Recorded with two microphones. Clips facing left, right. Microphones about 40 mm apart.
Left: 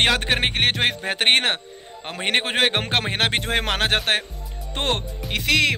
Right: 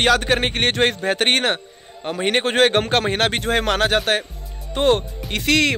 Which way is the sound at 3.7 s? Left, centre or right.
Left.